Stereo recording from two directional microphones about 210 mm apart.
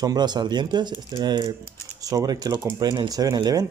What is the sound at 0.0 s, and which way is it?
Speech, 20° right (ahead or behind).